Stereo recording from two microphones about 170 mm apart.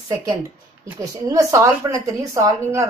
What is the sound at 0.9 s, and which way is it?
A woman's voice, 20° right (ahead or behind).